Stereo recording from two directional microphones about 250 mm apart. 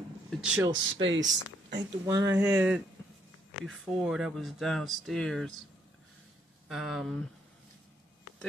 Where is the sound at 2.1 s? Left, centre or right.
Centre.